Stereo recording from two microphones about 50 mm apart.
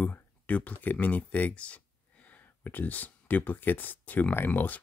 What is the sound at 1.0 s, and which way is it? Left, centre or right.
Speech, left.